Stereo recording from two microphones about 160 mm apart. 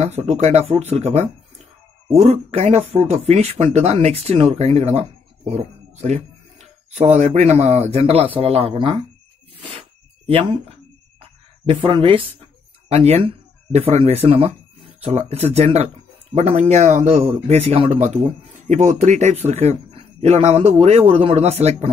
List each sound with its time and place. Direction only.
0.0 s speech: 40° right (ahead or behind)
9.6 s a sound: 35° right (ahead or behind)
12.9 s speech: 40° right (ahead or behind)